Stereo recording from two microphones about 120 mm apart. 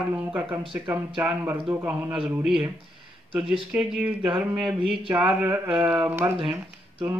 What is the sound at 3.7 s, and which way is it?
Speech, 10° right (ahead or behind).